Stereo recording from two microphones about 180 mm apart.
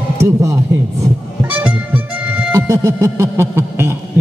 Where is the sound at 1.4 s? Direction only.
10° right (ahead or behind).